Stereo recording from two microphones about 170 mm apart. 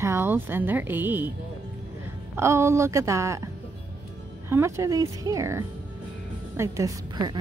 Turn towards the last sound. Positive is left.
turn(degrees=-25)  # may be behind; listen again after turning